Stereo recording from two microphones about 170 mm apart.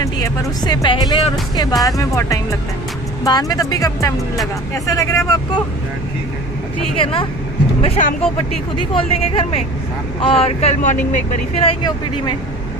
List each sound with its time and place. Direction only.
0.0 s speech: 20° left (ahead or behind)
7.0 s speech: 30° left (ahead or behind)
8.0 s speech: 45° left (ahead or behind)
8.9 s speech: 35° left (ahead or behind)
11.5 s speech: 30° left (ahead or behind)